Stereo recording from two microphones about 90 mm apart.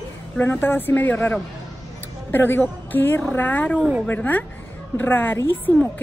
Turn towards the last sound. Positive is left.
turn(degrees=25)  # may be behind; listen again after turning